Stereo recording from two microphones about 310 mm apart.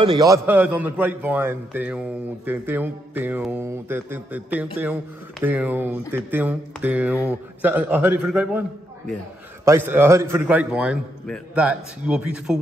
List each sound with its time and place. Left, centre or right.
0.0 s a man's voice: centre
2.4 s music: centre
5.4 s a man's voice: centre
7.2 s music: centre
8.3 s a man's voice: centre